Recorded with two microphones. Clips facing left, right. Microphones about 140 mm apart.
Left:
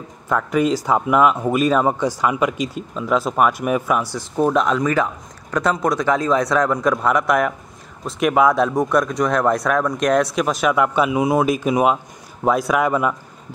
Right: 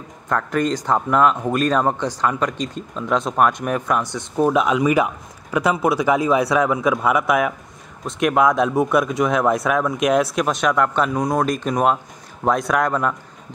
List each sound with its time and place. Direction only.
0.3 s speech: 5° left (ahead or behind)